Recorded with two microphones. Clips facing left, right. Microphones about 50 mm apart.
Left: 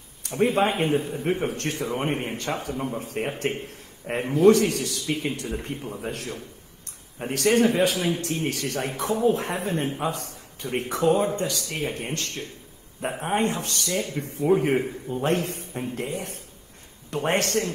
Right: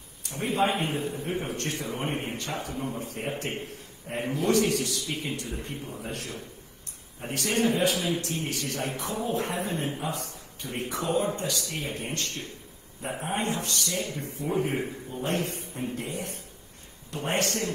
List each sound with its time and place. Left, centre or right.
0.4 s a man's voice: left
4.7 s a man's voice: right
5.0 s a man's voice: left
13.0 s speech: left
13.5 s a man's voice: left
15.0 s a man's voice: left